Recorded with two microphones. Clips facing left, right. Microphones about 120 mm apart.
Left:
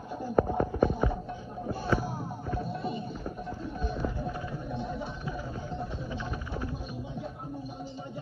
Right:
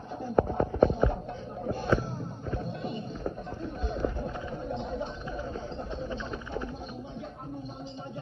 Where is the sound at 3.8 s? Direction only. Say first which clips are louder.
Right 2 dB; 20° right (ahead or behind).